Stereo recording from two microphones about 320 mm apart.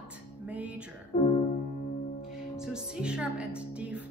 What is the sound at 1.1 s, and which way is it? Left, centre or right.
Music, centre.